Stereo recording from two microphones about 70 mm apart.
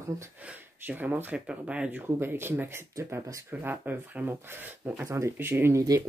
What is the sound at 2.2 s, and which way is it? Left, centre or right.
Speech, right.